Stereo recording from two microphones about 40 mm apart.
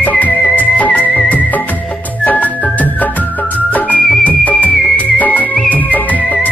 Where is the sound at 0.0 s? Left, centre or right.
Left.